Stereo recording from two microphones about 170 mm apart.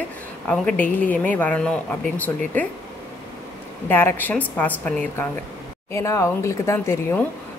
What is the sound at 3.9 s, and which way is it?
A woman's voice, 10° left (ahead or behind).